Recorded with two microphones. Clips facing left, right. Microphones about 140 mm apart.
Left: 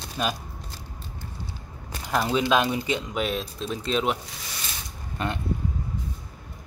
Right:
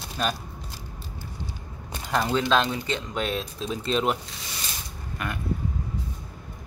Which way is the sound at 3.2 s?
Centre (ahead or behind).